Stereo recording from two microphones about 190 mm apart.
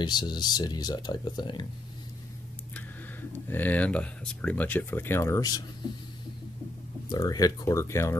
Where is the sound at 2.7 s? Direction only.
10° left (ahead or behind).